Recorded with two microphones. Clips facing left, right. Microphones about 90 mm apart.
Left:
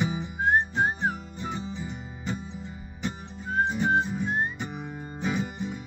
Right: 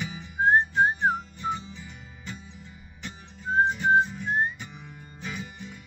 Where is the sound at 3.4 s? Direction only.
25° right (ahead or behind).